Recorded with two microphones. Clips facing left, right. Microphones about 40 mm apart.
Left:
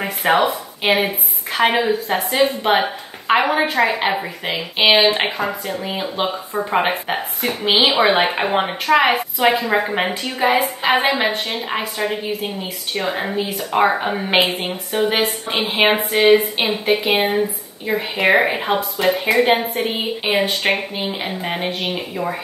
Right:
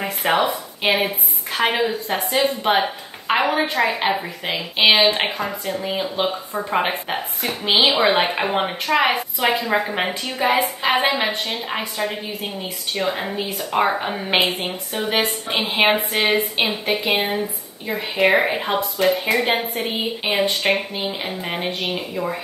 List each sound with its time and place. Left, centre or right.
0.0 s a woman's voice: centre
15.7 s a sound: centre
16.5 s a woman's voice: centre